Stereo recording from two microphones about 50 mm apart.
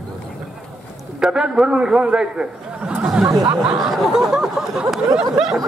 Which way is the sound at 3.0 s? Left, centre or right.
Centre.